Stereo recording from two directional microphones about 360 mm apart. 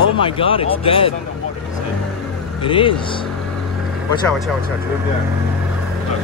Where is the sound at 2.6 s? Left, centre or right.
Centre.